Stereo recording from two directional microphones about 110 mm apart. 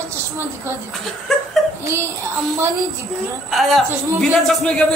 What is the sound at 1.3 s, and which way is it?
Laughter, centre (ahead or behind).